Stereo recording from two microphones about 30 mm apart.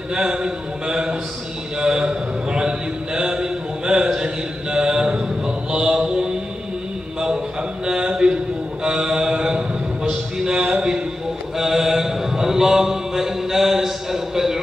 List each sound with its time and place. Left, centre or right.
0.1 s a man's voice: right
5.7 s mantra: right
7.8 s a sound: right
8.8 s mantra: right
10.4 s speech: right
11.5 s a sound: centre